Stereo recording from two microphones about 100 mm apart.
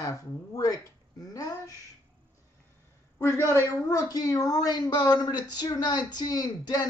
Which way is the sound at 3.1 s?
25° left (ahead or behind).